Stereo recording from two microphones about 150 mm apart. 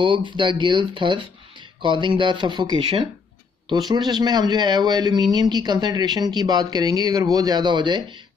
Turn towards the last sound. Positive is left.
turn(degrees=-30)  # may be behind; listen again after turning